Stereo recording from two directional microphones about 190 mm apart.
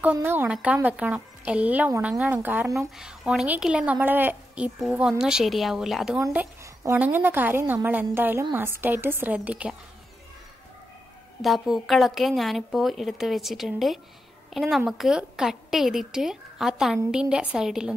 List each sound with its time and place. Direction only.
0.0 s a woman's voice: 10° right (ahead or behind)
6.1 s a woman's voice: 15° right (ahead or behind)
11.4 s a woman's voice: centre (ahead or behind)